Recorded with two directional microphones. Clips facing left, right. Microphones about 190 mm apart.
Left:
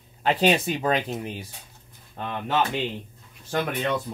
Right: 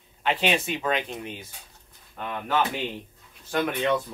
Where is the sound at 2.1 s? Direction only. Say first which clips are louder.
Left 1 dB; 25° left (ahead or behind).